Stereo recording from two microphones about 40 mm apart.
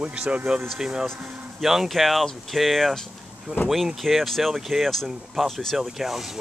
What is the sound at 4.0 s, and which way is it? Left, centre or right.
Speech, centre.